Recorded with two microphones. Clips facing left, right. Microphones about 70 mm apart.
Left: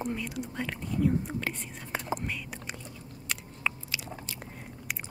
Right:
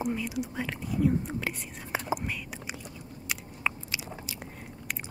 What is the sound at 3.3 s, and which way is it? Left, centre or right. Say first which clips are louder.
Biting: right 1 dB; centre.